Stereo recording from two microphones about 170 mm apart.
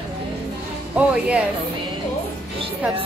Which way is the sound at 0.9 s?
5° right (ahead or behind).